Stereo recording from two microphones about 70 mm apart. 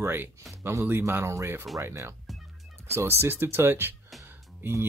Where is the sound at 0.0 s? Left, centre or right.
Right.